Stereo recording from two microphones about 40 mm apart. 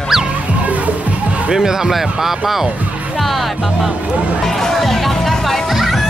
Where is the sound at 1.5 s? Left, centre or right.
Centre.